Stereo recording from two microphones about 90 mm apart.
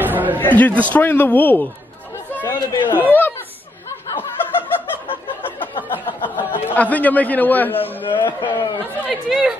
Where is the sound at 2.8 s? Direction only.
25° left (ahead or behind).